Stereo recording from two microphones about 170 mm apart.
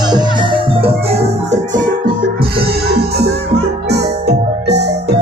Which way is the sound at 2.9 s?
70° right (ahead or behind).